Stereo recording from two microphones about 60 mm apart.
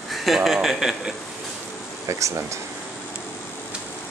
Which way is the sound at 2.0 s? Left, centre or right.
Right.